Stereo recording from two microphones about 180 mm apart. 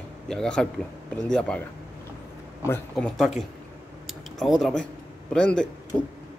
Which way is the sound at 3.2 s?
Centre (ahead or behind).